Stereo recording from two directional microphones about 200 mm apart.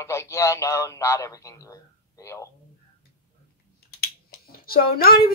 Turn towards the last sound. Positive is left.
turn(degrees=50)  # may be behind; listen again after turning